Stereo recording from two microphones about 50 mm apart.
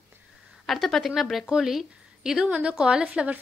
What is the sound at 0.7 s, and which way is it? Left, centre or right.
Speech, centre.